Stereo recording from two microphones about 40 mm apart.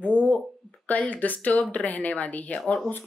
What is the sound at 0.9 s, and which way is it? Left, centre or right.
A woman's voice, left.